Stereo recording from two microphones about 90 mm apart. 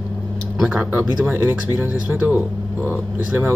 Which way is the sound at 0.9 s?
20° right (ahead or behind).